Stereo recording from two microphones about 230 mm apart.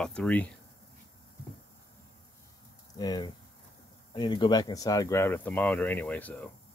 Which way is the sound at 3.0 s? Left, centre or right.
Centre.